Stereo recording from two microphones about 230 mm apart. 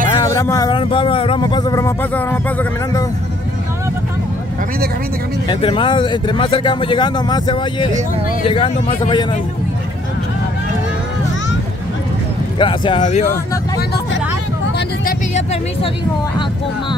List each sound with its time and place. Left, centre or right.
0.1 s speech: centre
5.5 s speech: left
12.5 s speech: left
15.0 s speech: left